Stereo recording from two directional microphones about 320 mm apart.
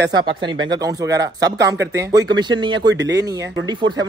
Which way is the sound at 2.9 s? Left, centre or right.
Right.